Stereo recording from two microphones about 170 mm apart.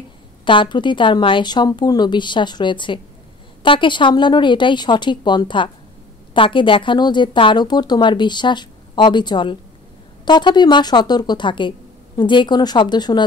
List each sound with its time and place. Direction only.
0.5 s a woman's voice: 30° left (ahead or behind)